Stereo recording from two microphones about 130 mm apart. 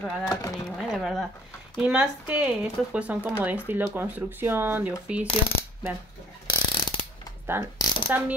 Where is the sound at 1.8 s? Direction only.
5° right (ahead or behind).